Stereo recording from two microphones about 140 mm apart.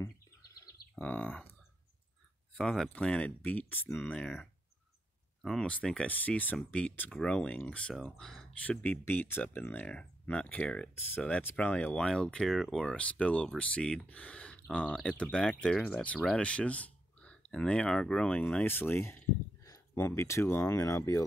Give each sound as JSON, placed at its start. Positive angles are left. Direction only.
{"t": 0.9, "sound": "speech", "side_deg": 10}
{"t": 2.5, "sound": "speech", "side_deg": 5}